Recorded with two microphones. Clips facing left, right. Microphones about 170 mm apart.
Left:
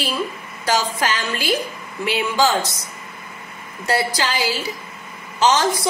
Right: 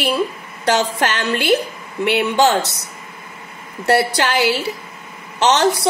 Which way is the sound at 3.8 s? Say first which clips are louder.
Right 5 dB; 65° right (ahead or behind).